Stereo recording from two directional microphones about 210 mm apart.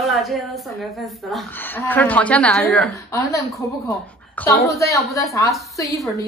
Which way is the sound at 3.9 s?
15° left (ahead or behind).